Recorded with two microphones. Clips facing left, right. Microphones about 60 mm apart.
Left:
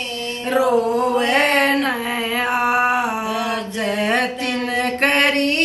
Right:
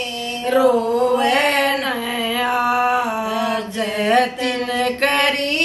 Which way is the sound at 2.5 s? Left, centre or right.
Left.